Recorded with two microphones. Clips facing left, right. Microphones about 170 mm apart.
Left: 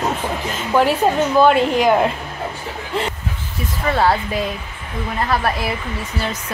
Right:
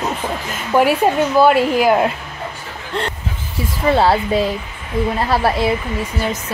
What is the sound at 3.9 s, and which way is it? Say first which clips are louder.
Speech: right 3 dB; 30° right (ahead or behind).